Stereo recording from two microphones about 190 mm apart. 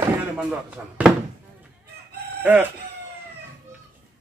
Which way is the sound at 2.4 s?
10° right (ahead or behind).